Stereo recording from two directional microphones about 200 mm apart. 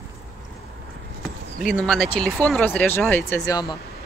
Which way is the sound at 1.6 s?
5° left (ahead or behind).